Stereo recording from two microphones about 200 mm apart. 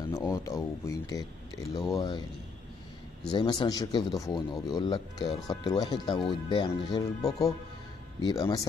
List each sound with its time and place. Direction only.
0.1 s speech: 15° left (ahead or behind)
3.3 s speech: 20° left (ahead or behind)